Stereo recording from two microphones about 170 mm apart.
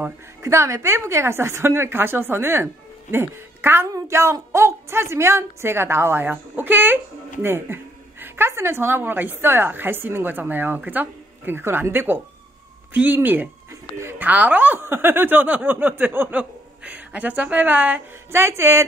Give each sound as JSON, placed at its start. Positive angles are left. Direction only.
{"t": 0.0, "sound": "a woman's voice", "side_deg": -15}